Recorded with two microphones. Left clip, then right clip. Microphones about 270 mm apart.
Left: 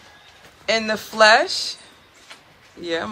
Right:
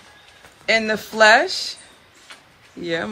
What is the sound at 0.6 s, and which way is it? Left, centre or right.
Speech, centre.